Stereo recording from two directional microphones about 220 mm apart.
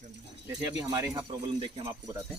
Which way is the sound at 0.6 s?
15° right (ahead or behind).